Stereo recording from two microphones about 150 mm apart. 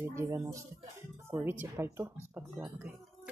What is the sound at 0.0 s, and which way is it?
Speech, 20° right (ahead or behind).